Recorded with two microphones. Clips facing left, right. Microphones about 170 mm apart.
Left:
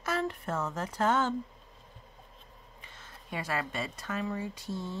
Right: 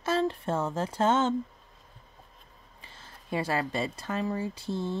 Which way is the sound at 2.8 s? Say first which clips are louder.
Right 2 dB; 30° right (ahead or behind).